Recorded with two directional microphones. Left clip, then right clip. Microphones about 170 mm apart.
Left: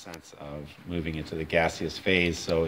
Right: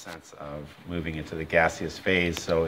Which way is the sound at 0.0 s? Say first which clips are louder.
Right 2 dB; 15° left (ahead or behind).